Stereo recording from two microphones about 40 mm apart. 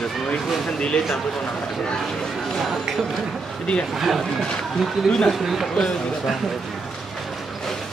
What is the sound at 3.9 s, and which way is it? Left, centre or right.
Speech, centre.